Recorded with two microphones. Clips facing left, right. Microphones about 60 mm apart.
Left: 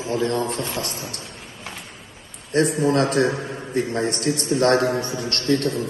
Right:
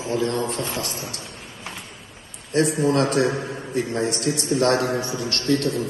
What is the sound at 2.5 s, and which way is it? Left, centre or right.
A man's voice, left.